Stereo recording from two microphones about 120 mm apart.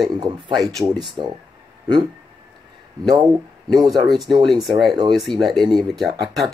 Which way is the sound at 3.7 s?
30° right (ahead or behind).